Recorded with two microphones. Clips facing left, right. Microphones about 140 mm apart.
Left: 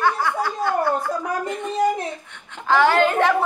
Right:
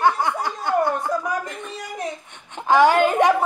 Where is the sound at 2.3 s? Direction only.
20° right (ahead or behind).